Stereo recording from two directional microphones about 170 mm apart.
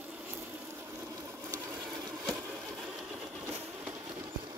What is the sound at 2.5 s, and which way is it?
Engine, centre (ahead or behind).